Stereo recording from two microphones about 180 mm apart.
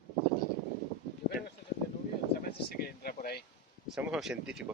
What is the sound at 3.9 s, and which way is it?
Speech, centre (ahead or behind).